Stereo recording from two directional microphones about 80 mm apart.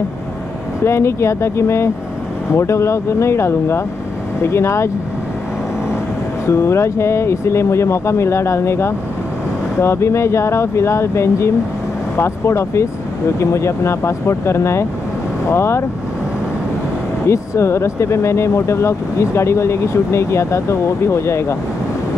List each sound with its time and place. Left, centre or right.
0.8 s speech: left
6.5 s speech: left
17.3 s speech: left